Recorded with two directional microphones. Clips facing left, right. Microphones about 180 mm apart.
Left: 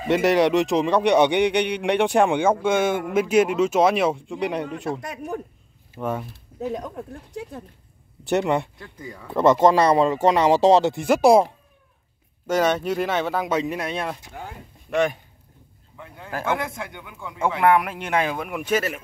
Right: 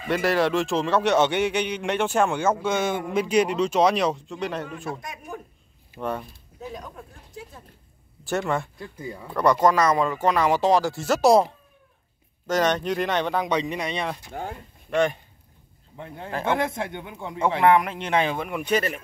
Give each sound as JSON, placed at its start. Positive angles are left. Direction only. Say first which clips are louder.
{"t": 0.0, "sound": "speech", "louder": "left 4 dB", "side_deg": 20}
{"t": 1.5, "sound": "speech", "louder": "left 4 dB", "side_deg": 70}
{"t": 1.8, "sound": "speech", "louder": "left 4 dB", "side_deg": 15}
{"t": 5.0, "sound": "speech", "louder": "left 6 dB", "side_deg": 70}
{"t": 5.9, "sound": "speech", "louder": "left 2 dB", "side_deg": 5}
{"t": 6.6, "sound": "speech", "louder": "left 8 dB", "side_deg": 65}
{"t": 8.3, "sound": "speech", "louder": "left 4 dB", "side_deg": 20}
{"t": 8.7, "sound": "speech", "louder": "right 3 dB", "side_deg": -25}
{"t": 9.3, "sound": "speech", "louder": "left 3 dB", "side_deg": 25}
{"t": 16.4, "sound": "speech", "louder": "right 2 dB", "side_deg": -25}
{"t": 17.6, "sound": "speech", "louder": "even", "side_deg": 5}